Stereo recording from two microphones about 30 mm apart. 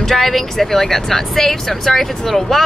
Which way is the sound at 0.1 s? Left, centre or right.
Centre.